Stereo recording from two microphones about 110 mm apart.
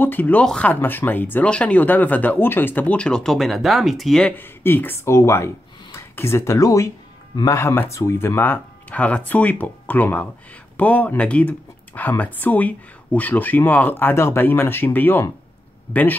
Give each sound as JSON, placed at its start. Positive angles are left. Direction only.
{"t": 0.0, "sound": "speech", "side_deg": 15}
{"t": 4.4, "sound": "speech", "side_deg": 20}